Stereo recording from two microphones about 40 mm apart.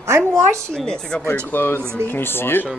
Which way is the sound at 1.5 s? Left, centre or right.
Left.